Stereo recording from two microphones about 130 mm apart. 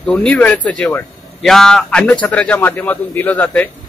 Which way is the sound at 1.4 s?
Centre (ahead or behind).